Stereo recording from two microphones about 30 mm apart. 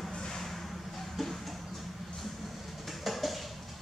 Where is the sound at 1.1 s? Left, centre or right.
Centre.